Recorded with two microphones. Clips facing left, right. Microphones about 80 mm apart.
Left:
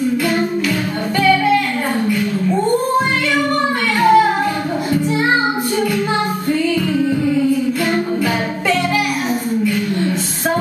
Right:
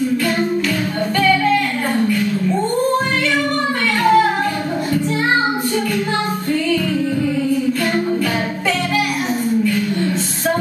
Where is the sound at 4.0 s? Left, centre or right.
Centre.